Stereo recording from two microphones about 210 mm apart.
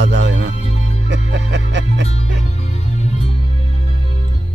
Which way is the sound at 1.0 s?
55° right (ahead or behind).